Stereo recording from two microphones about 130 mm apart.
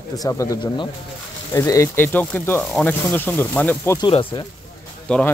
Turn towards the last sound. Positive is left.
turn(degrees=5)  # may be behind; listen again after turning